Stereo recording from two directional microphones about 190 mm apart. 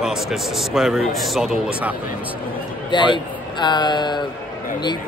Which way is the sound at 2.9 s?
25° left (ahead or behind).